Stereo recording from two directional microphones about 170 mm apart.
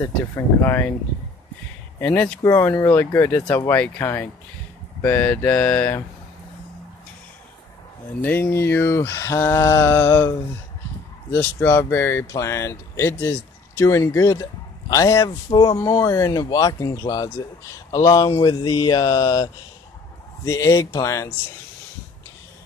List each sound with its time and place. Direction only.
0.7 s speech: 10° left (ahead or behind)
2.0 s speech: 10° left (ahead or behind)
8.2 s speech: 10° left (ahead or behind)
11.3 s speech: 15° left (ahead or behind)